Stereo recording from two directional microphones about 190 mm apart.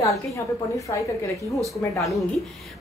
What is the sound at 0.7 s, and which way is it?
Speech, 15° left (ahead or behind).